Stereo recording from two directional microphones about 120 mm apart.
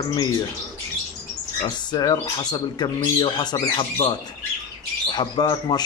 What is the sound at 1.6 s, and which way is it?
Speech, 40° left (ahead or behind).